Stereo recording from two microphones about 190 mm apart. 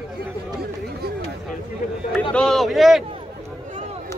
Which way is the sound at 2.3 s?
Centre (ahead or behind).